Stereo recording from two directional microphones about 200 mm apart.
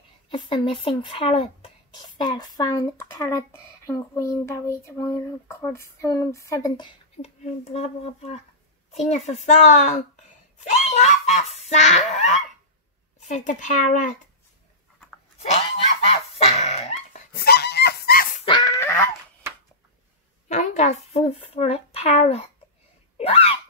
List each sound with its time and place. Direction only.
0.3 s speech: 25° left (ahead or behind)
7.2 s speech: 30° left (ahead or behind)
10.6 s honk: 35° left (ahead or behind)
13.3 s speech: 40° left (ahead or behind)
16.1 s goose: 35° left (ahead or behind)
17.3 s goose: 50° left (ahead or behind)
18.4 s dog: 25° left (ahead or behind)
18.8 s a sound: 15° left (ahead or behind)
20.4 s speech: 35° left (ahead or behind)
23.1 s a sound: 30° left (ahead or behind)